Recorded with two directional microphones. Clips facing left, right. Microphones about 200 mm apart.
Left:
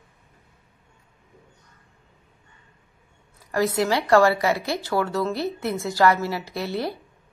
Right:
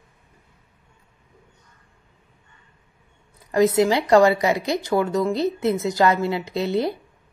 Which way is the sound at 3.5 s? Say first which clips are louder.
Right 5 dB; 20° right (ahead or behind).